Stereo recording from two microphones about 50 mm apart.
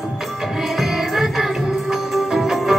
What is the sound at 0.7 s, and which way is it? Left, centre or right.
Music, centre.